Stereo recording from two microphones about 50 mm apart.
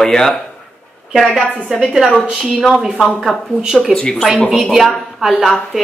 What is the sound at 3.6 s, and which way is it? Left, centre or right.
Speech, centre.